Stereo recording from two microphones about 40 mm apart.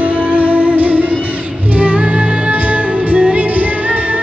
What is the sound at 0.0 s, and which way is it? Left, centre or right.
Music, right.